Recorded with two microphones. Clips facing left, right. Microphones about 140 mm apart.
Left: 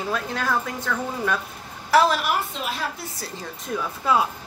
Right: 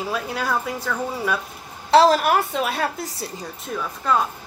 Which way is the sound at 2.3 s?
65° right (ahead or behind).